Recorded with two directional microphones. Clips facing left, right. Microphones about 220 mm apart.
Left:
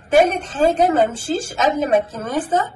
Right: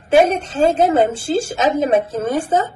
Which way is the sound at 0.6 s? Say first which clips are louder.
Right 1 dB; 25° right (ahead or behind).